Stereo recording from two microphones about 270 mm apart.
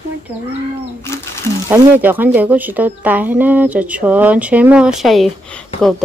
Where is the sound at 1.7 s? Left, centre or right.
Centre.